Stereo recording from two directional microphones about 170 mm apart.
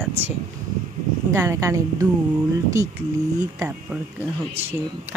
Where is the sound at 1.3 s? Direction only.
15° right (ahead or behind).